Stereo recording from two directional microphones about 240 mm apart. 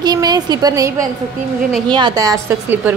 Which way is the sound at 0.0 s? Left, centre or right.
Centre.